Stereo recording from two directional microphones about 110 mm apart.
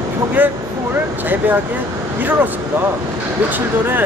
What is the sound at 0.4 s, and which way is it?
Speech, 15° right (ahead or behind).